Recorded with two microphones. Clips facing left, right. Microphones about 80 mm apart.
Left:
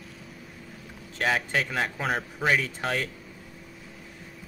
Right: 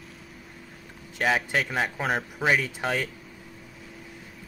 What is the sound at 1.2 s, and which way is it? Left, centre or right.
Speech, centre.